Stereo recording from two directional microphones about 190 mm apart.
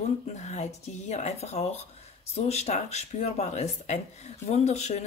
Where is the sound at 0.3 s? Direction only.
35° left (ahead or behind).